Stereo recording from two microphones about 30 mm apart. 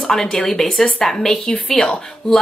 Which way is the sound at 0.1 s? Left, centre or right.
Centre.